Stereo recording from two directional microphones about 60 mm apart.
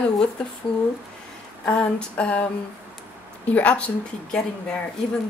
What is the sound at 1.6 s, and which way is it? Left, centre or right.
Speech, centre.